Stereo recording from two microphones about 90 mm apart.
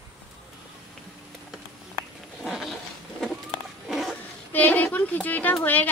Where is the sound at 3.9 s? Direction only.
Centre (ahead or behind).